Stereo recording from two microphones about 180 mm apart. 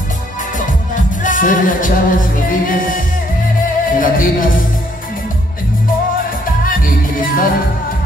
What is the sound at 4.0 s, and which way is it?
Speech, 50° left (ahead or behind).